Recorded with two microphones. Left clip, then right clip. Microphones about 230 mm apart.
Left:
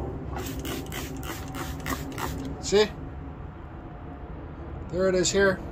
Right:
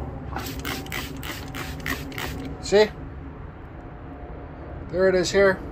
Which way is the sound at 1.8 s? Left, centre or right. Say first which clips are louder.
Right 3 dB; left.